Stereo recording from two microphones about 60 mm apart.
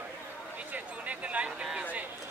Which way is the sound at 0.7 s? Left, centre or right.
Right.